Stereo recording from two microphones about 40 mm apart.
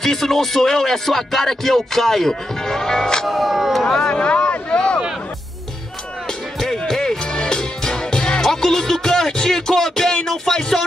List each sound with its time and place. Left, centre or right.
0.0 s music: centre
3.3 s speech: centre
4.0 s a sound: left
6.9 s music: centre